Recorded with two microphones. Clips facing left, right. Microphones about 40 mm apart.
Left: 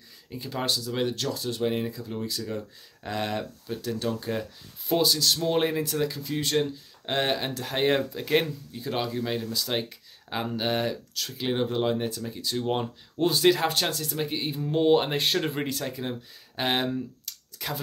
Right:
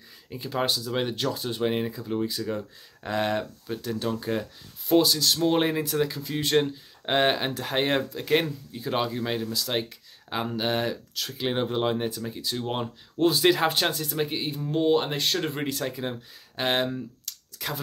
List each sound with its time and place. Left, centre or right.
0.3 s speech: centre
5.4 s speech: centre
6.5 s speech: right
7.5 s speech: centre
9.5 s speech: centre
14.5 s speech: centre
16.5 s a sound: centre